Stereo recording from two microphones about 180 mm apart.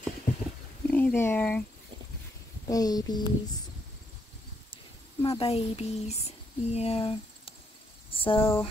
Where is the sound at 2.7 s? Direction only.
20° left (ahead or behind).